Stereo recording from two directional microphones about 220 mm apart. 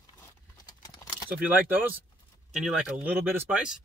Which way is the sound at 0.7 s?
20° left (ahead or behind).